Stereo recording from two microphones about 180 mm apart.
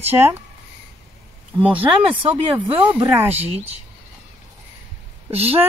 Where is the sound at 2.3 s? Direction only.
30° right (ahead or behind).